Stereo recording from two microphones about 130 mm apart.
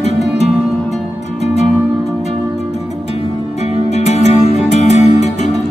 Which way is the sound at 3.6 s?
55° left (ahead or behind).